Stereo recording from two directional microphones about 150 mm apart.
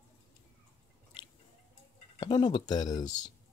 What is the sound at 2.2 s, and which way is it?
Speech, 30° left (ahead or behind).